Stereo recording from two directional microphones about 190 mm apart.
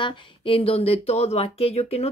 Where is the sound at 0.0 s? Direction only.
30° left (ahead or behind).